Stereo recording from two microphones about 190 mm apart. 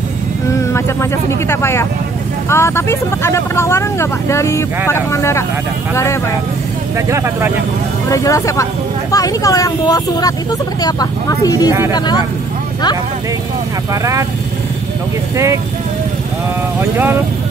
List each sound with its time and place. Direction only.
1.5 s speech: 15° left (ahead or behind)
7.1 s speech: 15° right (ahead or behind)
8.1 s speech: 15° left (ahead or behind)
15.3 s speech: 15° right (ahead or behind)